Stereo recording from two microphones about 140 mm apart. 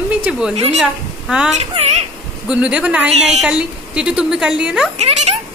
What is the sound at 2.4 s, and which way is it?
A woman's voice, 10° right (ahead or behind).